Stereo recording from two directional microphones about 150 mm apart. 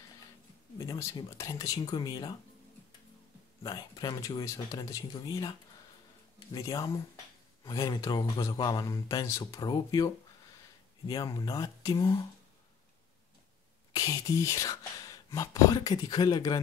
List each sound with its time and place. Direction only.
0.7 s speech: 20° left (ahead or behind)
3.6 s speech: 25° left (ahead or behind)
13.9 s speech: 25° left (ahead or behind)